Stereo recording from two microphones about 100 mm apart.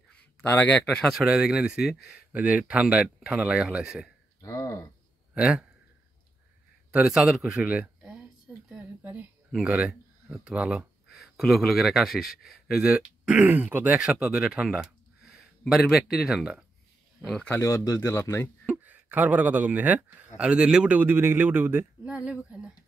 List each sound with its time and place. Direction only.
0.5 s speech: 15° left (ahead or behind)
1.1 s speech: 5° right (ahead or behind)
4.4 s speech: 35° left (ahead or behind)
5.3 s a man's voice: 10° right (ahead or behind)
6.9 s speech: 10° right (ahead or behind)
9.5 s speech: 10° right (ahead or behind)
17.5 s speech: 25° left (ahead or behind)
18.7 s speech: 15° right (ahead or behind)